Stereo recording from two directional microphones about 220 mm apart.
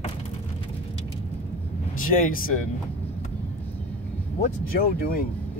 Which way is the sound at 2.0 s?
40° left (ahead or behind).